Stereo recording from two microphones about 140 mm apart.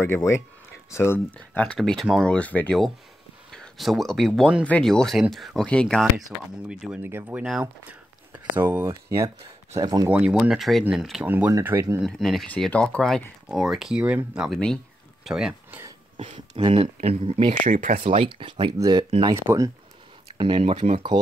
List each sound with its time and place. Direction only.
0.0 s speech: 20° left (ahead or behind)
1.8 s speech: centre (ahead or behind)
2.3 s speech: 10° left (ahead or behind)
7.0 s speech: 15° right (ahead or behind)
10.0 s speech: 5° right (ahead or behind)
11.2 s speech: 15° right (ahead or behind)
12.1 s speech: centre (ahead or behind)
16.2 s speech: 40° right (ahead or behind)
17.6 s speech: 75° right (ahead or behind)
18.1 s speech: 40° right (ahead or behind)
20.3 s speech: 40° right (ahead or behind)